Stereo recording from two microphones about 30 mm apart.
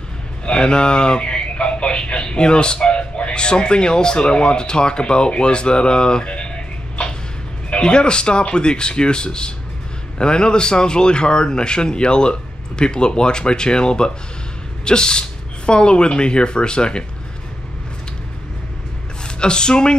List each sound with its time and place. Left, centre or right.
0.5 s speech: left
7.8 s speech: left
19.2 s speech: left